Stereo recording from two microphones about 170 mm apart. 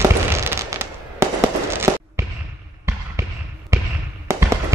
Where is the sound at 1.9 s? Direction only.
20° right (ahead or behind).